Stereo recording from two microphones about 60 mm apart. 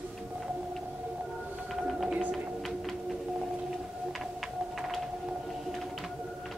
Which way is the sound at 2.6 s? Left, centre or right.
Centre.